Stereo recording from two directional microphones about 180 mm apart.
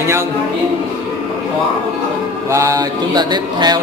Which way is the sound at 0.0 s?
15° right (ahead or behind).